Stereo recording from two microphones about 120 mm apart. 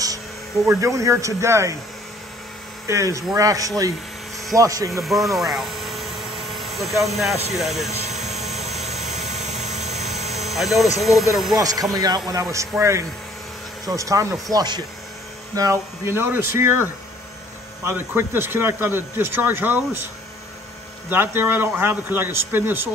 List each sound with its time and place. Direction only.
0.7 s speech: 25° right (ahead or behind)
2.9 s speech: 25° right (ahead or behind)
5.0 s a sound: centre (ahead or behind)
7.5 s speech: centre (ahead or behind)
7.9 s vehicle: 65° right (ahead or behind)
10.3 s a sound: centre (ahead or behind)
11.0 s speech: centre (ahead or behind)
11.5 s speech: 30° right (ahead or behind)
21.1 s a man's voice: 20° right (ahead or behind)